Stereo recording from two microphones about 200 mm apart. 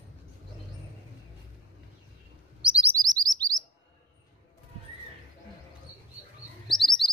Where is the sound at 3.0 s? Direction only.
20° right (ahead or behind).